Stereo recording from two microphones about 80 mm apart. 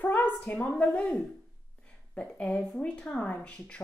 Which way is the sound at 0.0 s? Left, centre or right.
Left.